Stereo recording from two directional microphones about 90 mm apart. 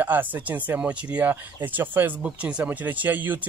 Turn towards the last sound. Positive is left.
turn(degrees=-20)  # may be behind; listen again after turning